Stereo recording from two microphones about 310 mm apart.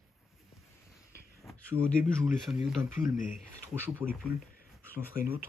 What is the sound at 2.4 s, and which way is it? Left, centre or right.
Speech, centre.